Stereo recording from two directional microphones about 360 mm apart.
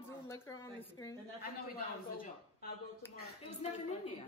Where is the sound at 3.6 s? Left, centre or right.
Centre.